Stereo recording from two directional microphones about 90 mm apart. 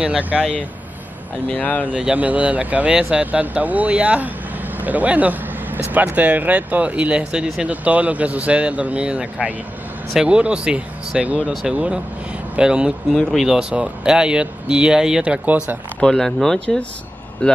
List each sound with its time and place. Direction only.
0.0 s speech: 15° right (ahead or behind)
1.5 s speech: 15° left (ahead or behind)
1.9 s speech: 15° right (ahead or behind)
4.7 s vehicle: 20° right (ahead or behind)
5.9 s speech: 15° right (ahead or behind)
12.5 s speech: 10° right (ahead or behind)
13.1 s speech: centre (ahead or behind); by 15.8 s 15° right (ahead or behind)
16.0 s speech: 5° left (ahead or behind)